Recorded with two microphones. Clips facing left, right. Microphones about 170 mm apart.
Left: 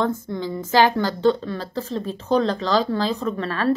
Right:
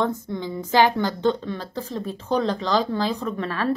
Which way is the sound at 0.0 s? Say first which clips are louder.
Left 1 dB; 20° right (ahead or behind).